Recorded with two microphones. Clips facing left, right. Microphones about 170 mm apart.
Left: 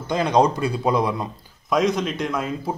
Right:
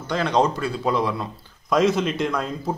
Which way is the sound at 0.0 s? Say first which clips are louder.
Left 2 dB; 15° left (ahead or behind).